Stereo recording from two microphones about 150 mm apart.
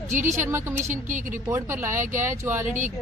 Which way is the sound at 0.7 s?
55° right (ahead or behind).